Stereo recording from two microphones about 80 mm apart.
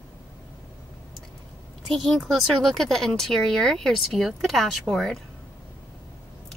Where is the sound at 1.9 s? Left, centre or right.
Centre.